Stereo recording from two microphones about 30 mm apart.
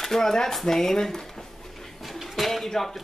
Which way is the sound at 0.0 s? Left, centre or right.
Centre.